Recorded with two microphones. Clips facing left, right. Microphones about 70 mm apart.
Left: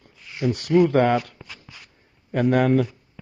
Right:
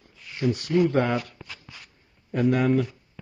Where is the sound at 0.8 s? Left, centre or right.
Left.